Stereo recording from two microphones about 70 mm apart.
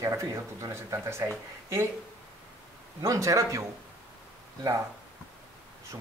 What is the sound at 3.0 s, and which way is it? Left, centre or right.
Speech, right.